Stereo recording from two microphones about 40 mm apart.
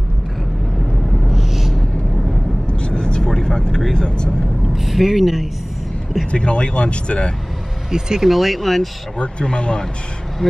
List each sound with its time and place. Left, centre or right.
1.2 s a sound: centre
2.7 s vehicle: left
4.7 s speech: centre
6.3 s speech: left
7.9 s speech: centre
8.3 s speech: centre
9.2 s speech: left